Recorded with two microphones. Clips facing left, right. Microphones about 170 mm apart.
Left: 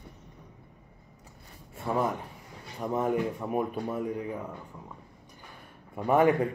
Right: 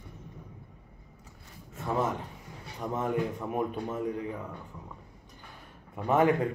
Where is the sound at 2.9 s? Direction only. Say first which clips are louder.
Left 2 dB; 10° left (ahead or behind).